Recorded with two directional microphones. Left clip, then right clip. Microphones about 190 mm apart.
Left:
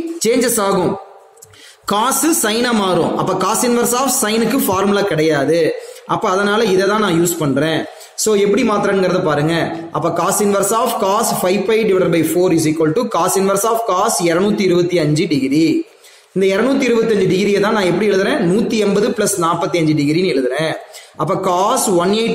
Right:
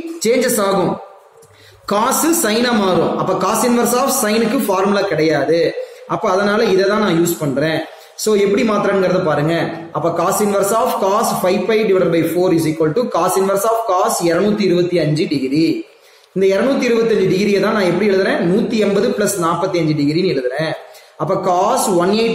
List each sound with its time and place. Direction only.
0.2 s a woman's voice: 45° left (ahead or behind)
1.9 s a woman's voice: 45° left (ahead or behind)